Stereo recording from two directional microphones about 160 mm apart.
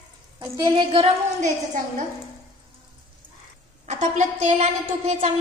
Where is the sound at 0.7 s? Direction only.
35° right (ahead or behind).